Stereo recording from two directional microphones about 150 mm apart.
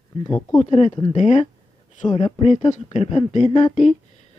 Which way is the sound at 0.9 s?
30° left (ahead or behind).